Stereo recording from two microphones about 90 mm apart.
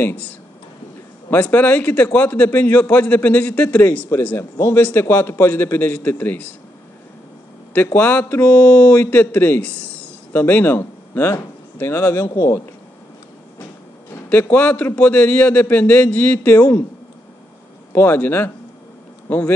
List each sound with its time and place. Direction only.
0.0 s a man's voice: 20° left (ahead or behind)
1.3 s a man's voice: 20° left (ahead or behind)
4.4 s a man's voice: 25° left (ahead or behind)
7.7 s a man's voice: 20° left (ahead or behind)
14.3 s a man's voice: 20° left (ahead or behind)
17.9 s a man's voice: 20° left (ahead or behind)